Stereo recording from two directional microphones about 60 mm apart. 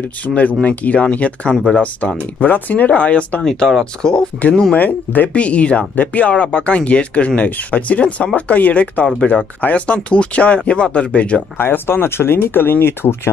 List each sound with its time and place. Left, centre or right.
0.3 s speech: left
1.5 s speech: centre
1.8 s speech: left
3.4 s speech: centre
4.7 s speech: left
11.5 s speech: left